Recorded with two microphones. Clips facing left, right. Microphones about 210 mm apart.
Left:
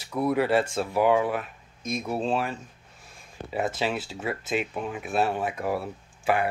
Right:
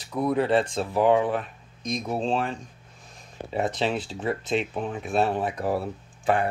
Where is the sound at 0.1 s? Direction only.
20° right (ahead or behind).